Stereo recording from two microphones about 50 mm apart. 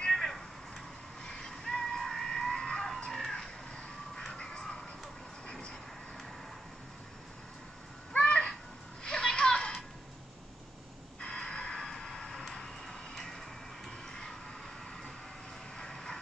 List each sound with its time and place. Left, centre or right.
0.0 s vehicle: centre
1.6 s a sound: centre
3.1 s music: centre
5.5 s vehicle: centre
8.2 s a sound: centre
11.1 s vehicle: centre
15.8 s vehicle: centre